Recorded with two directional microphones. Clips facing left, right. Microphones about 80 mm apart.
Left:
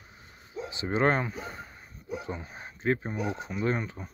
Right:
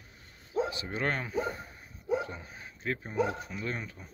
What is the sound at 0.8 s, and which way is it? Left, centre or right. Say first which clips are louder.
Speech: left 7 dB; left.